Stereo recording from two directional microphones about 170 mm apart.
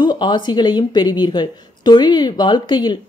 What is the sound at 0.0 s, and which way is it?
A woman's voice, 25° left (ahead or behind).